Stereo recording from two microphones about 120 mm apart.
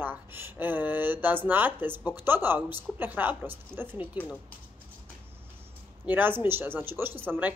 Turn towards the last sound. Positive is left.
turn(degrees=-15)  # may be behind; listen again after turning